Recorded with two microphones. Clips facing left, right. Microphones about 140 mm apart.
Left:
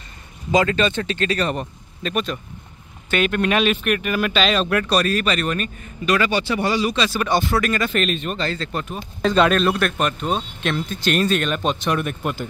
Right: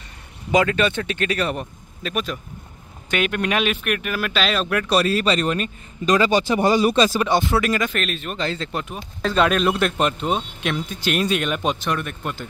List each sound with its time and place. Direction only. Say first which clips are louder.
0.5 s speech: even; 10° right (ahead or behind)
4.8 s speech: right 1 dB; 20° right (ahead or behind)
6.2 s speech: right 3 dB; 40° right (ahead or behind)
7.2 s speech: right 1 dB; 20° right (ahead or behind)
7.9 s speech: left 4 dB; centre (ahead or behind)
8.4 s speech: even; 20° right (ahead or behind)
8.9 s speech: left 4 dB; 5° right (ahead or behind)
9.7 s speech: even; 20° right (ahead or behind)
11.9 s speech: left 3 dB; 10° left (ahead or behind)